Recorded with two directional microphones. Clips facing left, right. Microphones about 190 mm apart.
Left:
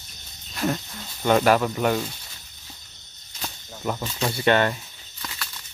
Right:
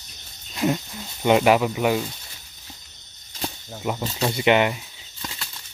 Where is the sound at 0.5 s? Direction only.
10° right (ahead or behind).